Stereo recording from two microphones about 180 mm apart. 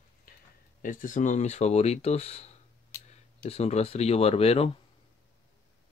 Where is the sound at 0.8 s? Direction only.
50° left (ahead or behind).